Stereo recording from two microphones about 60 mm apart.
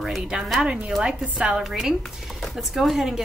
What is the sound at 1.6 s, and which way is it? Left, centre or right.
Speech, centre.